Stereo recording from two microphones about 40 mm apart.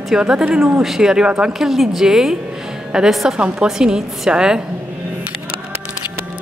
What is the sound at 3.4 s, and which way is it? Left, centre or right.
Speech, centre.